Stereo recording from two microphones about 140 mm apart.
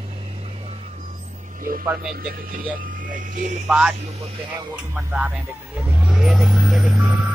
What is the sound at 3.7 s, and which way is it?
Speech, 5° right (ahead or behind).